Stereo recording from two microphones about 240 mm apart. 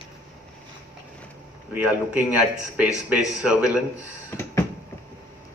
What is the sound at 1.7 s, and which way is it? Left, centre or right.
A man's voice, centre.